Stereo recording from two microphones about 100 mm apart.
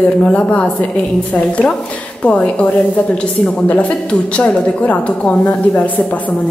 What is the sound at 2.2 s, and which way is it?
A woman's voice, 10° left (ahead or behind).